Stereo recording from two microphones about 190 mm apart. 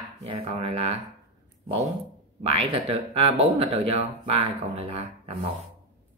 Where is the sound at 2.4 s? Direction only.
30° right (ahead or behind).